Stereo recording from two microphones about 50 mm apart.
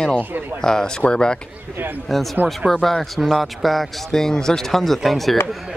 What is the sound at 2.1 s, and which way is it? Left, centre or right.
Speech, centre.